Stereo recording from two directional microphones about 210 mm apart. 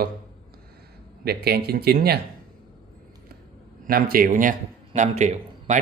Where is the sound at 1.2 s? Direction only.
50° right (ahead or behind).